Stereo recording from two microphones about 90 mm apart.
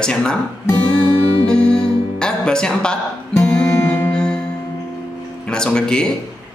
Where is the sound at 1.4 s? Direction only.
10° left (ahead or behind).